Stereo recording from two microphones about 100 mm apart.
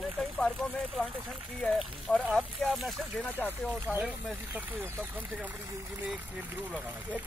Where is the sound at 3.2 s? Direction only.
20° left (ahead or behind).